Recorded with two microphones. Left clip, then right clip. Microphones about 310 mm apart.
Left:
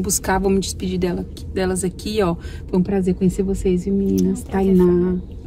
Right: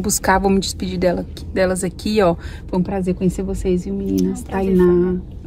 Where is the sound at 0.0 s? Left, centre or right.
Centre.